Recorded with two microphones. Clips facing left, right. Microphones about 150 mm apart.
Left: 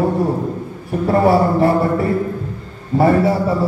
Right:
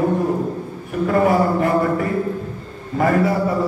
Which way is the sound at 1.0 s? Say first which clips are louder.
Left 2 dB; 35° left (ahead or behind).